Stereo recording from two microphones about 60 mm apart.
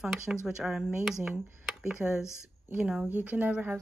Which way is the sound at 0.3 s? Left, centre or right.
Centre.